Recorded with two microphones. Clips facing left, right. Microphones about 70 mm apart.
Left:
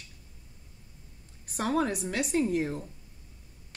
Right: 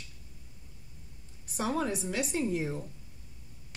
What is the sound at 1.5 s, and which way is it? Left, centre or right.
A woman's voice, left.